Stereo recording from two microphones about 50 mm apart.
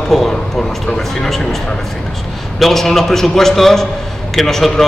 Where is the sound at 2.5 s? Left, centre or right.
Centre.